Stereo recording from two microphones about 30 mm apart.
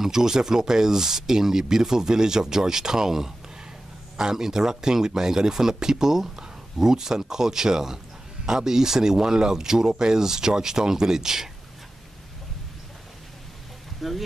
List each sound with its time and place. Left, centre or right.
0.0 s speech: centre
14.0 s speech: centre